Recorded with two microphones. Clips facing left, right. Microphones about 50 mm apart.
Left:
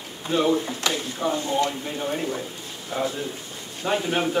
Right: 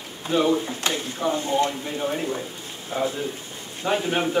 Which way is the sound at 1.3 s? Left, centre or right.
Right.